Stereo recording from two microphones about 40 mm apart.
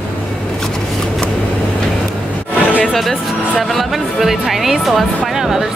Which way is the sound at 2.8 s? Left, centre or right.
Centre.